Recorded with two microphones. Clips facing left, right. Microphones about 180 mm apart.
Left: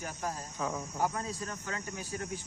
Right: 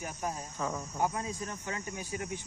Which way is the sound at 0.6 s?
5° left (ahead or behind).